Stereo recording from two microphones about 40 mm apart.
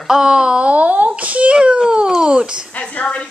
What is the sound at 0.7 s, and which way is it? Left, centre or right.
Speech, right.